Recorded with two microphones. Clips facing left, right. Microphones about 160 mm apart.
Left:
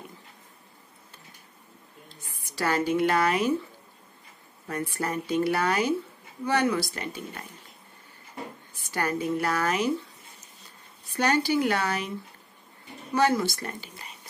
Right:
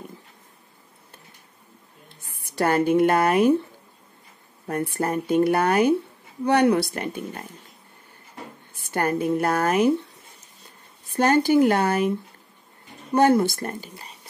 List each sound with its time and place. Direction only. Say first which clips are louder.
2.0 s speech: even; 60° right (ahead or behind)
4.6 s speech: right 5 dB; 55° right (ahead or behind)
6.4 s speech: right 6 dB; 65° right (ahead or behind)
8.8 s speech: right 5 dB; 55° right (ahead or behind)
11.1 s speech: right 6 dB; 50° right (ahead or behind)
13.1 s speech: right 6 dB; 55° right (ahead or behind)